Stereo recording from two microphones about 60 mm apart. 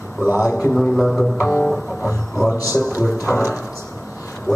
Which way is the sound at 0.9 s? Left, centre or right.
Centre.